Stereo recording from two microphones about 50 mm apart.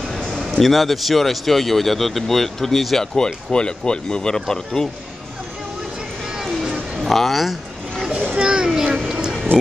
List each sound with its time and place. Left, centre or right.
0.1 s a sound: centre
0.5 s speech: centre
3.5 s speech: centre
7.0 s speech: centre
8.1 s splash: right
9.1 s a sound: centre